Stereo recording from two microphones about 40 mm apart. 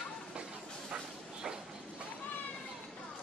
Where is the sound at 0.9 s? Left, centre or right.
Centre.